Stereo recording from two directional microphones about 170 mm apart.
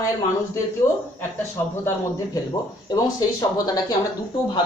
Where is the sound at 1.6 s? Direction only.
15° left (ahead or behind).